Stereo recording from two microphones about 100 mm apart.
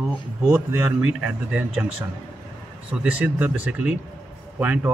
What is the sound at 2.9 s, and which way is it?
Speech, 15° right (ahead or behind).